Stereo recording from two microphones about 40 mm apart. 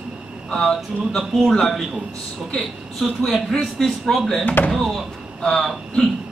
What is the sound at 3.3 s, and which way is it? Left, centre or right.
A man's voice, centre.